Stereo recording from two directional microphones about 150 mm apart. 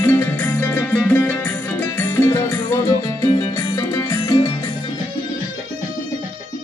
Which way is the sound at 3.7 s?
20° left (ahead or behind).